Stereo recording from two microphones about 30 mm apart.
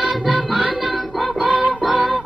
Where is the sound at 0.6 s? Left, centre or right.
Right.